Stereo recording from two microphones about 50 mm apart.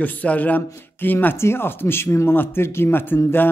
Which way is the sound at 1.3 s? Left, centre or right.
Left.